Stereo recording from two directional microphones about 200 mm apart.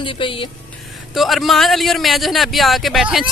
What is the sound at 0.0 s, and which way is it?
Speech, 25° left (ahead or behind).